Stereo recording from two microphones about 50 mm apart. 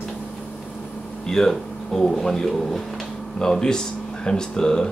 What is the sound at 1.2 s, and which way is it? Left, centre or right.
Speech, centre.